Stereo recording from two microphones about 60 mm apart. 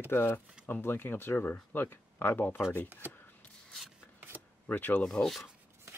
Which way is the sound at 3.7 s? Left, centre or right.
Centre.